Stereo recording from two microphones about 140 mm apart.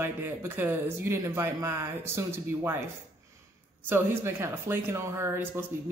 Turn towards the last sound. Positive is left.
turn(degrees=-15)  # may be behind; listen again after turning